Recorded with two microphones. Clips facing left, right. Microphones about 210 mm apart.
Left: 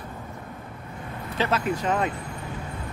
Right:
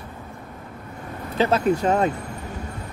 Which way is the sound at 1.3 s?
35° right (ahead or behind).